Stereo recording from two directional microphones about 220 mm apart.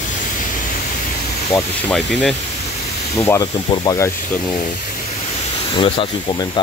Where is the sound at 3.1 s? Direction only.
15° left (ahead or behind).